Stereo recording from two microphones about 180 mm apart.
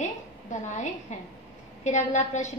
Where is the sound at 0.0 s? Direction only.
45° left (ahead or behind).